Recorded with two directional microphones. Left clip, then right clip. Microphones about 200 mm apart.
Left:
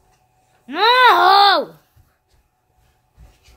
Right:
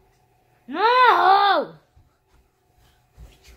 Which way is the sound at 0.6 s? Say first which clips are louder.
Left 4 dB; 25° left (ahead or behind).